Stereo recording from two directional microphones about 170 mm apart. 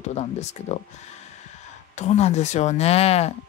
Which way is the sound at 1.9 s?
40° left (ahead or behind).